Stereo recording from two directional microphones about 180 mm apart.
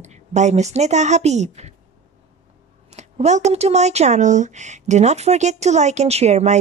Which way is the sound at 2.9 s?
40° right (ahead or behind).